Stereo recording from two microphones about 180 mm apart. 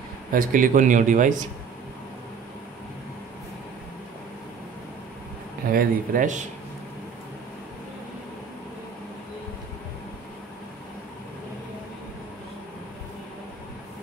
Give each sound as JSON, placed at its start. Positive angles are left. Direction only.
{"t": 0.3, "sound": "speech", "side_deg": -50}
{"t": 5.7, "sound": "speech", "side_deg": -50}